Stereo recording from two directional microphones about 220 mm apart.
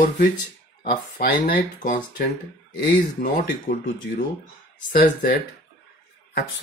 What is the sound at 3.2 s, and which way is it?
Speech, 40° left (ahead or behind).